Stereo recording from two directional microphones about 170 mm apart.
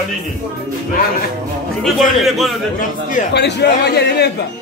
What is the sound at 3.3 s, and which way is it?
Speech, 75° left (ahead or behind).